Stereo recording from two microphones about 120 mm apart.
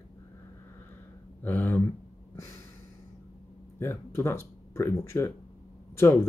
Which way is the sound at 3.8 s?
20° left (ahead or behind).